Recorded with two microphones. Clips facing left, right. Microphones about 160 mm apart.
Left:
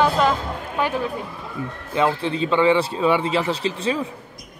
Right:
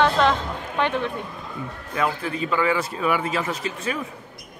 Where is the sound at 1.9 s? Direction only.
25° left (ahead or behind).